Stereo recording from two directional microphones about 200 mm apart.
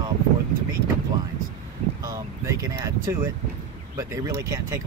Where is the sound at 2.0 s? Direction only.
15° right (ahead or behind).